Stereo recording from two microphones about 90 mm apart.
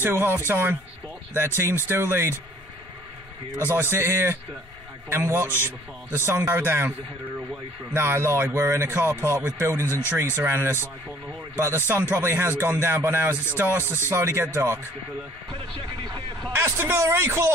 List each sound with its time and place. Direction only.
0.0 s speech: 25° right (ahead or behind)
3.5 s speech: 30° right (ahead or behind)
15.5 s speech: 65° right (ahead or behind)
16.5 s speech: 30° right (ahead or behind)